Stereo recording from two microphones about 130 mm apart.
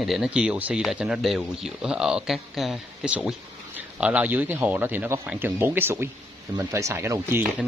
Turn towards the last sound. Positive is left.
turn(degrees=-20)  # may be behind; listen again after turning